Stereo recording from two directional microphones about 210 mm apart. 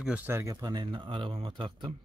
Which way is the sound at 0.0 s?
10° right (ahead or behind).